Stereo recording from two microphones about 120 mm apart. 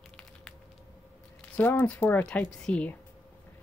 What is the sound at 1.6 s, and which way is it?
A woman's voice, 15° left (ahead or behind).